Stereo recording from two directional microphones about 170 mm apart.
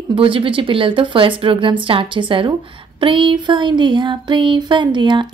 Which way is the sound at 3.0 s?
30° right (ahead or behind).